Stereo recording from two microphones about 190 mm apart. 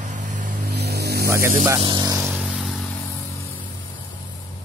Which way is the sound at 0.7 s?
60° right (ahead or behind).